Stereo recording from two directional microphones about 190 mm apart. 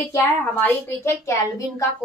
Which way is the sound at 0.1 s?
10° left (ahead or behind).